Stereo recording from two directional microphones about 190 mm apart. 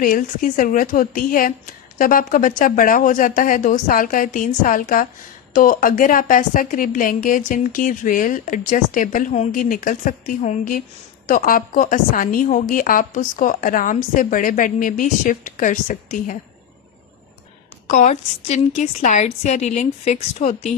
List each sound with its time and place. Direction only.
0.0 s a woman's voice: 45° left (ahead or behind)
17.8 s a woman's voice: 40° left (ahead or behind)